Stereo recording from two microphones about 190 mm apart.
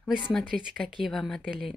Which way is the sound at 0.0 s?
Centre (ahead or behind).